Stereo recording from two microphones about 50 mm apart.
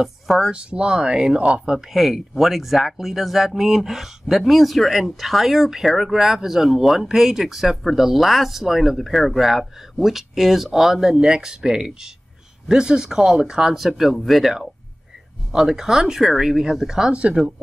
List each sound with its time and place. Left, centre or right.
0.0 s speech: centre
0.5 s speech: right
1.9 s speech: centre
17.1 s speech: right